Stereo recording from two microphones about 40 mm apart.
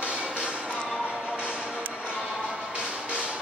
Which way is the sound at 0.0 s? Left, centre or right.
Right.